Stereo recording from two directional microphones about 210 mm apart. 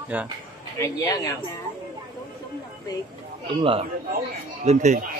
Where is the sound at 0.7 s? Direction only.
15° left (ahead or behind).